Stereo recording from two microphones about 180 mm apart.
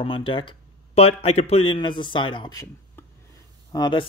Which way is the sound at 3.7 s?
25° left (ahead or behind).